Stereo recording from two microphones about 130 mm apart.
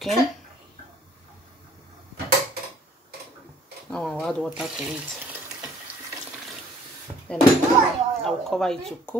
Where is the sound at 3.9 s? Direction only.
5° left (ahead or behind).